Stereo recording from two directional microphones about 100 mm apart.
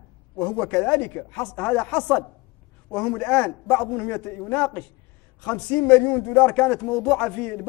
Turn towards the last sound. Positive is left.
turn(degrees=15)  # may be behind; listen again after turning